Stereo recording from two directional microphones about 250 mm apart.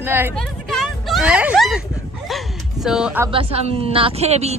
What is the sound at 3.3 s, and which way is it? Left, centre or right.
A woman's voice, right.